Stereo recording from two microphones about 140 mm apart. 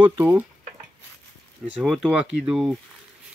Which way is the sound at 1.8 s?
5° right (ahead or behind).